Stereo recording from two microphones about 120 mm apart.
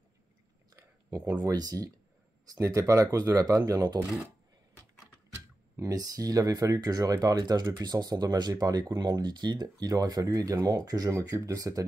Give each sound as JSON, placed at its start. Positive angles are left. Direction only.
{"t": 0.7, "sound": "a sound", "side_deg": -30}
{"t": 1.4, "sound": "speech", "side_deg": -30}
{"t": 5.8, "sound": "speech", "side_deg": -30}